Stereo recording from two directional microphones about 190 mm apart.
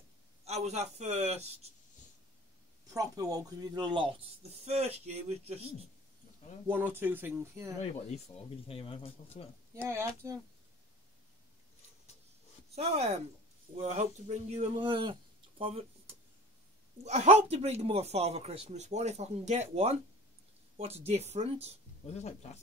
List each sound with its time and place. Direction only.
0.5 s speech: 35° right (ahead or behind)
2.9 s speech: 20° right (ahead or behind); by 5.5 s 35° right (ahead or behind)
6.7 s speech: 10° right (ahead or behind)
8.6 s speech: 30° left (ahead or behind)
9.8 s speech: 15° right (ahead or behind)
12.7 s speech: 30° right (ahead or behind)
17.0 s speech: 35° right (ahead or behind)
22.0 s speech: 35° left (ahead or behind)